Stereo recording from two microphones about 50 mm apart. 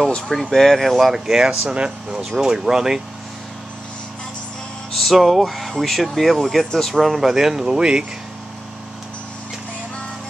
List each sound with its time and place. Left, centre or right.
0.3 s speech: centre
4.9 s speech: centre